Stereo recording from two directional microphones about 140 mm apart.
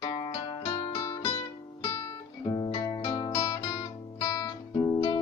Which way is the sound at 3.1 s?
35° left (ahead or behind).